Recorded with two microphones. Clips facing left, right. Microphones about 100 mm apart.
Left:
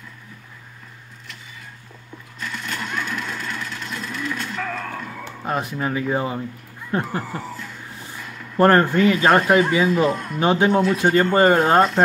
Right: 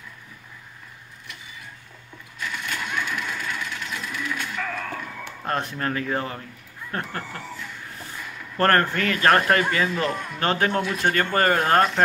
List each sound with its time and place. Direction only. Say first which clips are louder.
2.4 s sewing machine: left 1 dB; centre (ahead or behind)
3.3 s a sound: left 1 dB; 5° right (ahead or behind)
5.4 s speech: left 2 dB; 5° left (ahead or behind)
8.5 s speech: left 5 dB; 15° left (ahead or behind)